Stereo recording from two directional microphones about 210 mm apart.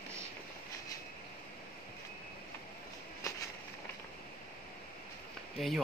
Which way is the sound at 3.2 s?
15° left (ahead or behind).